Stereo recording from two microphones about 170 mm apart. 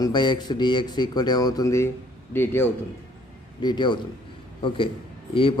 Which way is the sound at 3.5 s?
25° left (ahead or behind).